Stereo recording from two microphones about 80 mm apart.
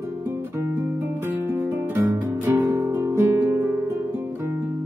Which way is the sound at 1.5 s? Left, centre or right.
Right.